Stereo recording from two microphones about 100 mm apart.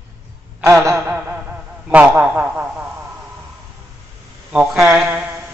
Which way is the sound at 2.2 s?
15° right (ahead or behind).